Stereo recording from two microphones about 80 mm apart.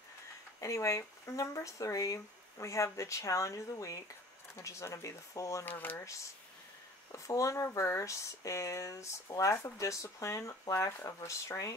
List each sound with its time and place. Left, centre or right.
0.6 s speech: left
5.7 s speech: left
5.9 s speech: left